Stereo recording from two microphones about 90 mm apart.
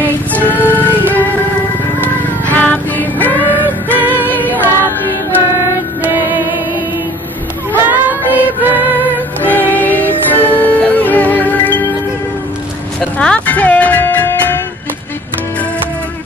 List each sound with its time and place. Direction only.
0.0 s music: 20° left (ahead or behind)
2.4 s music: 20° left (ahead or behind)
6.0 s music: 20° right (ahead or behind)
7.7 s child singing: 20° right (ahead or behind)
8.9 s music: 20° left (ahead or behind)
13.2 s music: 15° left (ahead or behind)